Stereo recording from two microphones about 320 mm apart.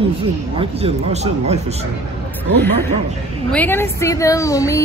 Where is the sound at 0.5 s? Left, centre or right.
Centre.